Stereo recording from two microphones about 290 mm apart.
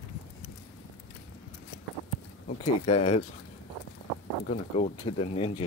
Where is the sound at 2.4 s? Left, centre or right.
Centre.